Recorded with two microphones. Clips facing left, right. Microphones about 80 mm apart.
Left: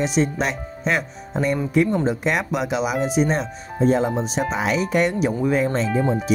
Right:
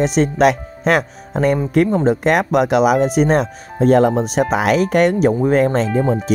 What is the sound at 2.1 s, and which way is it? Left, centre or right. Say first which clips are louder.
Speech: right 7 dB; right.